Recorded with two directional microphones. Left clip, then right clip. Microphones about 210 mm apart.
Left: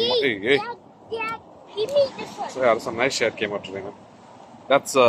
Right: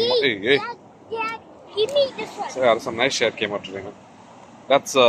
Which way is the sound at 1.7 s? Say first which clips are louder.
Right 1 dB; 25° right (ahead or behind).